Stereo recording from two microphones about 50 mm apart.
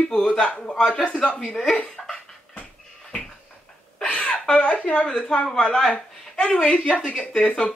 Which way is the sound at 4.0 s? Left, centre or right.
Left.